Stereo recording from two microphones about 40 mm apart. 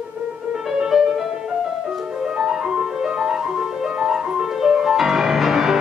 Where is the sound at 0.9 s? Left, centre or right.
Centre.